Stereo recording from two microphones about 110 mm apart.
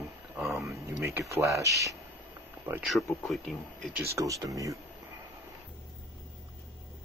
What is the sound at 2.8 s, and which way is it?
Speech, centre (ahead or behind).